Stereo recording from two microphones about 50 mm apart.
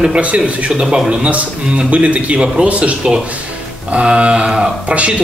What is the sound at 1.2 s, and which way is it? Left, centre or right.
Speech, right.